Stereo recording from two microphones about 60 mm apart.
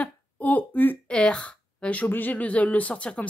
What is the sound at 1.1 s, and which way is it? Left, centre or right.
Speech, centre.